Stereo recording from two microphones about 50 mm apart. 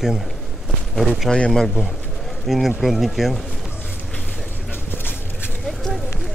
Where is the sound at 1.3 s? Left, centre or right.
Centre.